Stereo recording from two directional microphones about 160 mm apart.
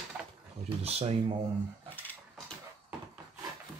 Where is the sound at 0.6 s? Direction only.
40° right (ahead or behind).